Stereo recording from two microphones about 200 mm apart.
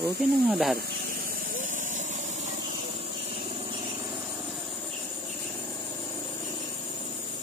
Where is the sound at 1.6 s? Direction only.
40° right (ahead or behind).